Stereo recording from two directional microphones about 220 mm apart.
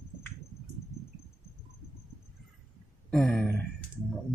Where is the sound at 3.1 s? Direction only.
Centre (ahead or behind).